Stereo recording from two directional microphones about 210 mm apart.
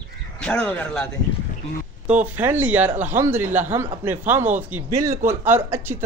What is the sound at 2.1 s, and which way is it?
Speech, 10° right (ahead or behind).